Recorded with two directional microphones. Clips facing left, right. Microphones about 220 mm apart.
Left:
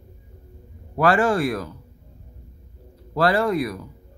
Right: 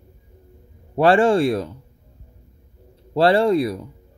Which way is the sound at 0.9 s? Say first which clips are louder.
Right 4 dB; 30° right (ahead or behind).